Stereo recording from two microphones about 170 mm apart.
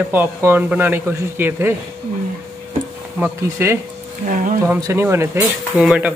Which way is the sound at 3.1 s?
10° right (ahead or behind).